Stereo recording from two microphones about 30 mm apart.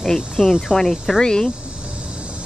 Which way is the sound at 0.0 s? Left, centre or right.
Centre.